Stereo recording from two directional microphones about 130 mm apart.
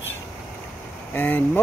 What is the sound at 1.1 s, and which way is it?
Speech, 15° left (ahead or behind).